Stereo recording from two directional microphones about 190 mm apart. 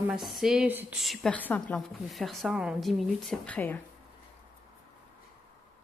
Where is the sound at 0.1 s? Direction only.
Centre (ahead or behind).